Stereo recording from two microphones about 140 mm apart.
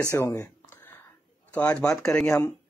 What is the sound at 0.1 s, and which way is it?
Speech, 20° left (ahead or behind).